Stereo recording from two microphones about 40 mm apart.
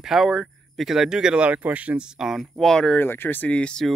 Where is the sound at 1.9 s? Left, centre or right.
Centre.